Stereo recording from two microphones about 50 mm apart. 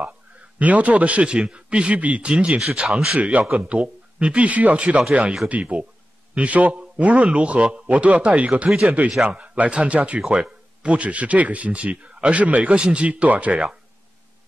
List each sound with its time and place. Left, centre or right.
0.0 s a man's voice: right
4.7 s a man's voice: right
8.6 s speech: centre
9.2 s speech: right